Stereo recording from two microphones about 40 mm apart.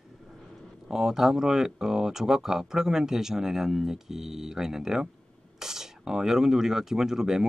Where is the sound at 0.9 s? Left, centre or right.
Centre.